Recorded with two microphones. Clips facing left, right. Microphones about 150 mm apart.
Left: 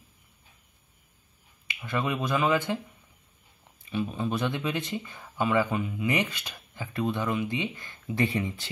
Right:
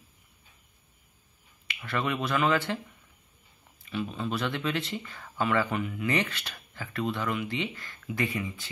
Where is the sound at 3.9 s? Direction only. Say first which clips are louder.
Left 2 dB; 20° left (ahead or behind).